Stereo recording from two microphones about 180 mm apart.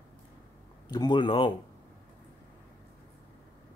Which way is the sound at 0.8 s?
25° left (ahead or behind).